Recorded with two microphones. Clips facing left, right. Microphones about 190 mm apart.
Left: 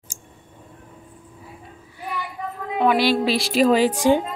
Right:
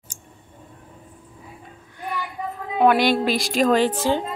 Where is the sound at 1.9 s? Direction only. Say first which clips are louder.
Right 1 dB; 5° left (ahead or behind).